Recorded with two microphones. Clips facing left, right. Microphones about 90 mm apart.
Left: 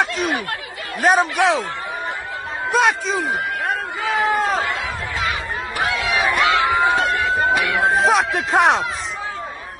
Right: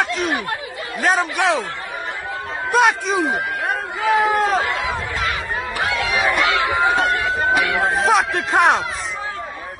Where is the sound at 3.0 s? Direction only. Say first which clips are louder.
Right 2 dB; 15° right (ahead or behind).